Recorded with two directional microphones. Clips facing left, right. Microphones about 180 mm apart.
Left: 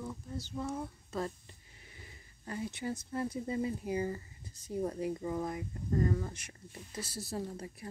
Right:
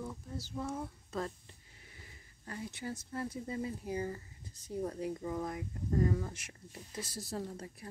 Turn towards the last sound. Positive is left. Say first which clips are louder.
# left 1 dB
turn(degrees=10)  # may be behind; listen again after turning